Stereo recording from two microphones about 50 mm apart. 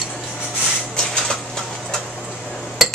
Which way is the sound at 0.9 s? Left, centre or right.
Centre.